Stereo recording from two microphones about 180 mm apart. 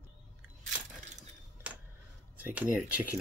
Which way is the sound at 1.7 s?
5° right (ahead or behind).